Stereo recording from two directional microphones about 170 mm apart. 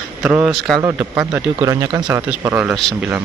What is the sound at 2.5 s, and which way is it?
Speech, 10° right (ahead or behind).